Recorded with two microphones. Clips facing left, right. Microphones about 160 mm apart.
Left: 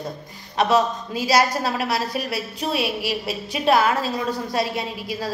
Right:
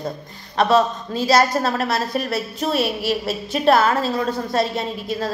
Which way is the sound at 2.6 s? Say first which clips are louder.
Right 3 dB; 40° right (ahead or behind).